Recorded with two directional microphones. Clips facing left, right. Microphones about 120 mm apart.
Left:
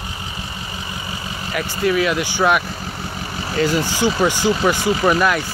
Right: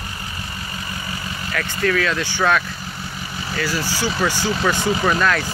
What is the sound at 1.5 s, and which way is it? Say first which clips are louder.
Speech: left 2 dB; 15° left (ahead or behind).